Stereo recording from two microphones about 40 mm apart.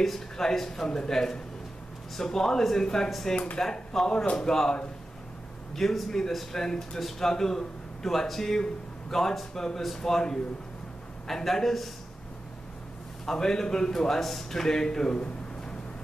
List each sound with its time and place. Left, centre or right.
0.0 s a man's voice: centre
3.1 s a man's voice: centre
5.8 s a man's voice: centre
13.2 s a man's voice: centre